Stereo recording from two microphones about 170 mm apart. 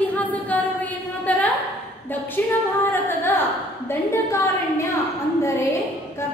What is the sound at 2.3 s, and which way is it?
Female singing, 10° left (ahead or behind).